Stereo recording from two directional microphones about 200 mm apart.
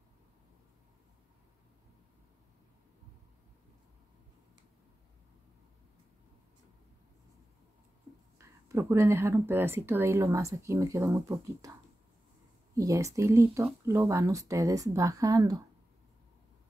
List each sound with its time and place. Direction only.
8.4 s speech: 15° right (ahead or behind)
12.7 s speech: 15° right (ahead or behind)